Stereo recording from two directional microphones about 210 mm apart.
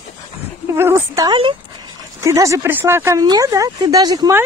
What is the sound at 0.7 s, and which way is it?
Speech, 10° right (ahead or behind).